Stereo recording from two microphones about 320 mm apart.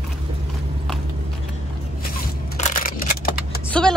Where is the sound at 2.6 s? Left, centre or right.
Left.